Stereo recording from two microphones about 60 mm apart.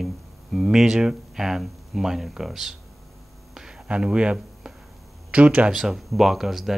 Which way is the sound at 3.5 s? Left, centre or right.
Centre.